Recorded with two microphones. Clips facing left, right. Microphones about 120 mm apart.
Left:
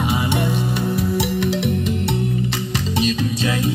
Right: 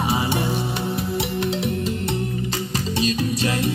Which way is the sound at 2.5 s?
40° right (ahead or behind).